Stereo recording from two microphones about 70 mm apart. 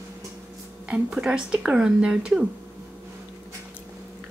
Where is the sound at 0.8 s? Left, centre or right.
Centre.